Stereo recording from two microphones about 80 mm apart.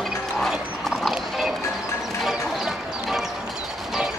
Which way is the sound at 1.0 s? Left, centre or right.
Centre.